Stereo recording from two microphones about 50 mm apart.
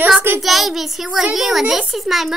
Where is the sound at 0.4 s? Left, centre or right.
Centre.